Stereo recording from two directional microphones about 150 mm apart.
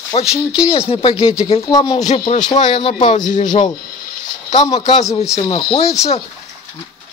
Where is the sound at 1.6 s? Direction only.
25° left (ahead or behind).